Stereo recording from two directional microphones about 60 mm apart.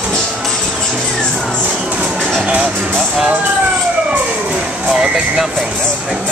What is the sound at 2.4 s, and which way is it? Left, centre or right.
Music, right.